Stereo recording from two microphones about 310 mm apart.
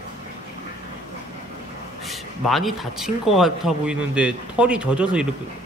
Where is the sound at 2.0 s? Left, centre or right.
Centre.